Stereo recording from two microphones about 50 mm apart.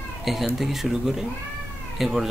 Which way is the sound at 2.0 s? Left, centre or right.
Centre.